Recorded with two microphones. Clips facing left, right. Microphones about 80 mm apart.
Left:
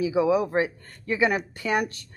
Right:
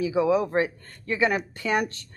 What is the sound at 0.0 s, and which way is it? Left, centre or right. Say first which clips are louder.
Speech: even; centre.